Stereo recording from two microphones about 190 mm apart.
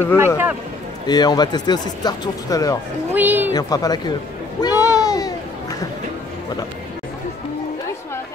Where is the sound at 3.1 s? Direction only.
10° right (ahead or behind).